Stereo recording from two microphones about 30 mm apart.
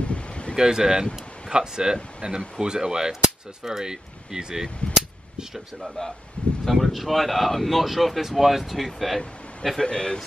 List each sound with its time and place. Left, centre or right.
0.0 s wind: left
0.6 s speech: right
2.6 s speech: right
5.5 s speech: centre
6.4 s speech: left
6.7 s speech: centre
9.8 s speech: left